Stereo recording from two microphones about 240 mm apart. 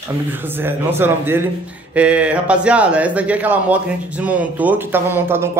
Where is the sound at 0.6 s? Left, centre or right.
Centre.